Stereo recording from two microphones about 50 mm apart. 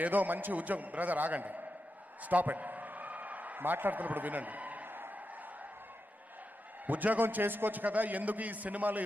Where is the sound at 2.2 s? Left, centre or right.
Right.